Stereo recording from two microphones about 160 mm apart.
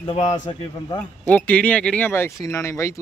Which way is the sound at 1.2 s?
10° left (ahead or behind).